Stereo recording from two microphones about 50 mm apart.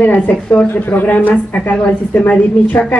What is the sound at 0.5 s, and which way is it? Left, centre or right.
A woman's voice, left.